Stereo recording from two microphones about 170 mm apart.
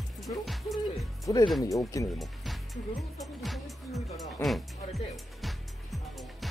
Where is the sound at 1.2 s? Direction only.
20° left (ahead or behind).